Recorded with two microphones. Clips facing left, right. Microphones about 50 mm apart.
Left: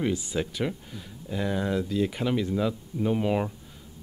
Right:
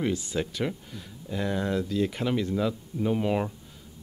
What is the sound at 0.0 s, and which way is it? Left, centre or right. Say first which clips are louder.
Speech: left 1 dB; centre.